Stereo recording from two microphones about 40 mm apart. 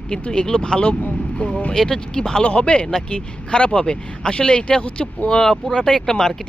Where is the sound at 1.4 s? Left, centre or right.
Left.